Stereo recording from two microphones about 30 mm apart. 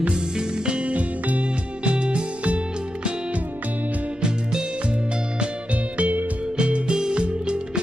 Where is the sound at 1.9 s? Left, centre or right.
Right.